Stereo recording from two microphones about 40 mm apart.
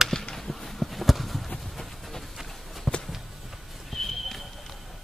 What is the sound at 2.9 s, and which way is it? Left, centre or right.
Walk, centre.